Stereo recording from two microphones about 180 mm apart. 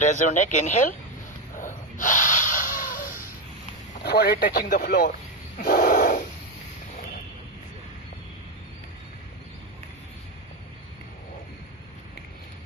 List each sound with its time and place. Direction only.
0.0 s speech: 40° left (ahead or behind)
1.6 s snort: 45° left (ahead or behind)
4.0 s a man's voice: 60° left (ahead or behind)
5.6 s snort: 50° left (ahead or behind)